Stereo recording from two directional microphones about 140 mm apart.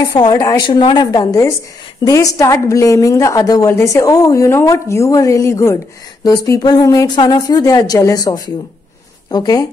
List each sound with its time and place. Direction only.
0.0 s a woman's voice: 30° left (ahead or behind)
0.7 s a woman's voice: 35° left (ahead or behind)